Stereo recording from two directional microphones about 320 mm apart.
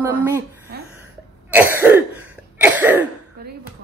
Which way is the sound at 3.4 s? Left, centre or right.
Right.